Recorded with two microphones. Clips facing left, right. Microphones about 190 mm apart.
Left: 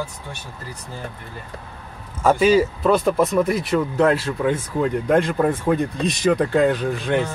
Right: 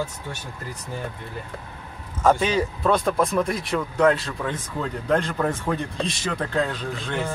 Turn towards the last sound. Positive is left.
turn(degrees=15)  # may be behind; listen again after turning